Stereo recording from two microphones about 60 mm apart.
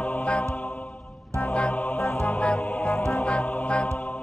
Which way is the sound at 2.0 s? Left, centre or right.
Left.